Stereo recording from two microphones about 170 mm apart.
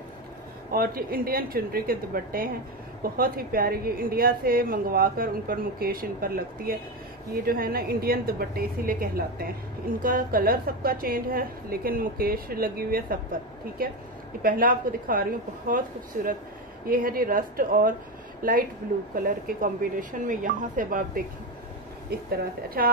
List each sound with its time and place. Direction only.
0.7 s a woman's voice: 60° right (ahead or behind)
22.1 s speech: 65° right (ahead or behind)